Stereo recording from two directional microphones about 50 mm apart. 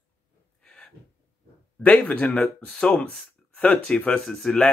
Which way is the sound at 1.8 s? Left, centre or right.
Left.